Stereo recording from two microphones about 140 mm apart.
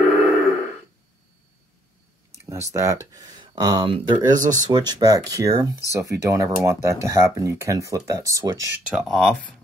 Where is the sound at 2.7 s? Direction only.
20° right (ahead or behind).